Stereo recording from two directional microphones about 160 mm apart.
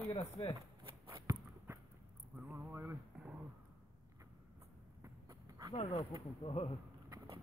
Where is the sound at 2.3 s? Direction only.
10° right (ahead or behind).